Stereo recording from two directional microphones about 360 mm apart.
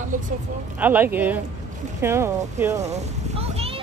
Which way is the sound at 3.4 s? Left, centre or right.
Centre.